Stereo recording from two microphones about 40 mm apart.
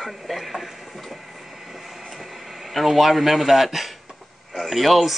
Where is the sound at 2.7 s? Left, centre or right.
Centre.